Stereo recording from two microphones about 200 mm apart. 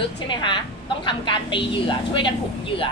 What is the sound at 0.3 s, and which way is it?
A woman's voice, 25° left (ahead or behind).